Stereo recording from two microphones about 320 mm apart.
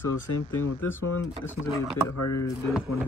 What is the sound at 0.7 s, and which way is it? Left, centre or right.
Speech, centre.